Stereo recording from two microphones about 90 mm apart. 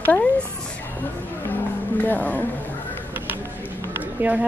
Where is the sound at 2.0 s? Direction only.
20° left (ahead or behind).